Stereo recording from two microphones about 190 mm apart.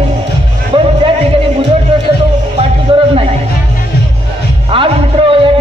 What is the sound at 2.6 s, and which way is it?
Music, 30° right (ahead or behind).